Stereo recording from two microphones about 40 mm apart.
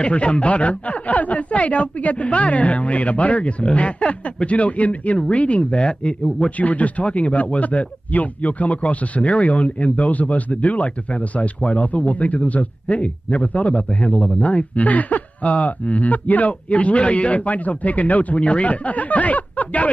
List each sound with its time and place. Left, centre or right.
0.0 s speech: left
5.8 s speech: centre
6.5 s speech: left
14.5 s speech: left
18.4 s speech: left